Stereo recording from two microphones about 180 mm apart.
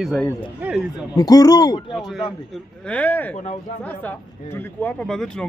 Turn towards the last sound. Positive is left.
turn(degrees=5)  # may be behind; listen again after turning